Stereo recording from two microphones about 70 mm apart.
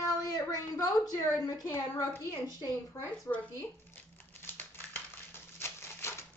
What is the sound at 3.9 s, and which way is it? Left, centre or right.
Crumpling, left.